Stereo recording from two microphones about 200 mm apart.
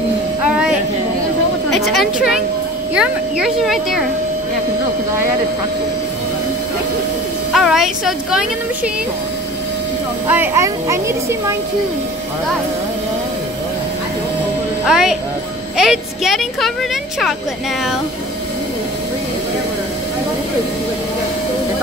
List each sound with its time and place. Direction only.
0.5 s music: 5° right (ahead or behind)
1.7 s a woman's voice: centre (ahead or behind)
7.5 s speech: centre (ahead or behind)
10.2 s speech: 10° right (ahead or behind)
14.9 s speech: centre (ahead or behind)